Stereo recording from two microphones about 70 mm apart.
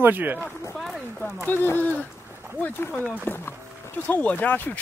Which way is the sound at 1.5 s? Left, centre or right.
Left.